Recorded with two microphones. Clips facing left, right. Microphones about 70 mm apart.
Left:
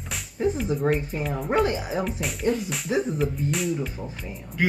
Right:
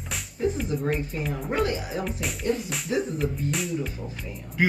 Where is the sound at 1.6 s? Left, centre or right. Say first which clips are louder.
Left 2 dB; left.